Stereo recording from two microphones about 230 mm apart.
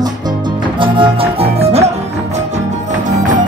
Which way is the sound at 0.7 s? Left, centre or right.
Right.